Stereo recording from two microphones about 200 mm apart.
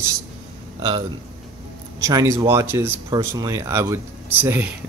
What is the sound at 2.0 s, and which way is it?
Speech, 15° right (ahead or behind).